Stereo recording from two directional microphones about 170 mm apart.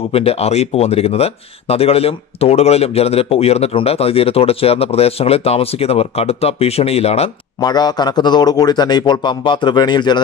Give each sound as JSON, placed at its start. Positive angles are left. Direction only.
{"t": 0.1, "sound": "speech", "side_deg": 35}
{"t": 7.6, "sound": "speech", "side_deg": 25}